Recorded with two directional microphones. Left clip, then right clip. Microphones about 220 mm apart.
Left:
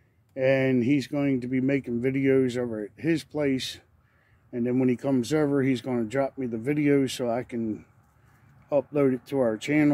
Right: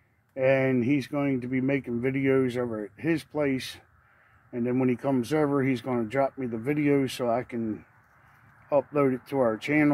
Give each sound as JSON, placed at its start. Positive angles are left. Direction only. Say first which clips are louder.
{"t": 0.3, "sound": "speech", "louder": "even", "side_deg": 15}